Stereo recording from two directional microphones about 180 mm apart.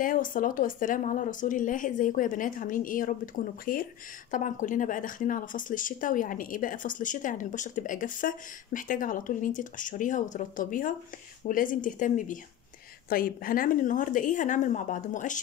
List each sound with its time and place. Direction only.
0.0 s speech: 50° left (ahead or behind)